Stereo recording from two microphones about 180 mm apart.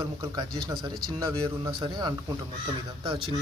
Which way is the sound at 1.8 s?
25° right (ahead or behind).